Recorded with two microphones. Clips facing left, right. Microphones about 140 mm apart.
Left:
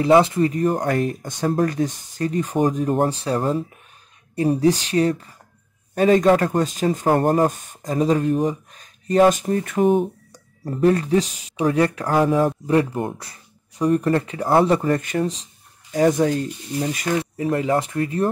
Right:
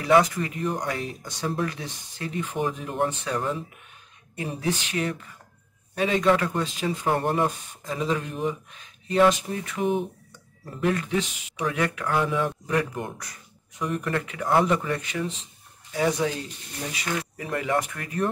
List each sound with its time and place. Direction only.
0.0 s speech: 25° left (ahead or behind); by 17.2 s 45° left (ahead or behind)
17.2 s speech: 30° left (ahead or behind)